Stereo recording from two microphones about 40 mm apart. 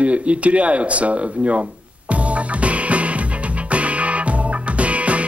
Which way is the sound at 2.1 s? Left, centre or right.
Right.